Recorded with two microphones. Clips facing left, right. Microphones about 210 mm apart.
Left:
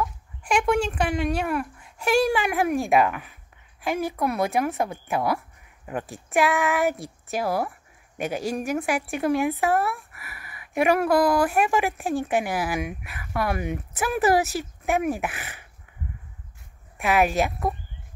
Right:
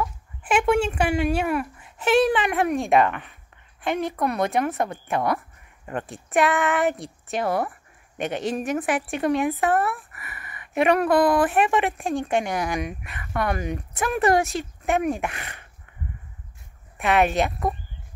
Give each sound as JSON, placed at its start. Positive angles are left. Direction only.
{"t": 0.0, "sound": "speech", "side_deg": -5}
{"t": 17.0, "sound": "speech", "side_deg": 0}